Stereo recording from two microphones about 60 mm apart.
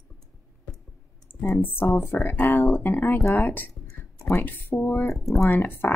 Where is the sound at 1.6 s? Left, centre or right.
Left.